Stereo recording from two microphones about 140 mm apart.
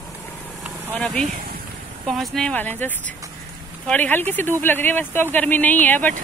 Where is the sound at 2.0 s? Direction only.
Centre (ahead or behind).